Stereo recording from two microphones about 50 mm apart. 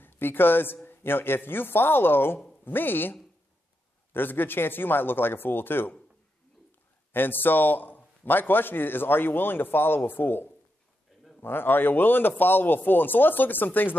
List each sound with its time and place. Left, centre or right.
0.0 s a man's voice: left
7.1 s a man's voice: left